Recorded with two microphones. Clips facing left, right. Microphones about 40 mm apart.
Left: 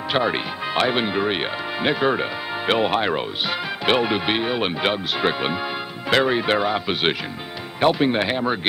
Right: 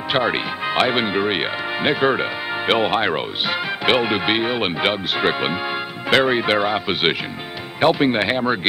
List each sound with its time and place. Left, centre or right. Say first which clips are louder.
0.1 s speech: right 2 dB; right